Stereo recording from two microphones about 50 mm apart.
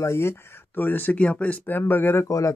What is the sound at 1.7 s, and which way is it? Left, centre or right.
Speech, left.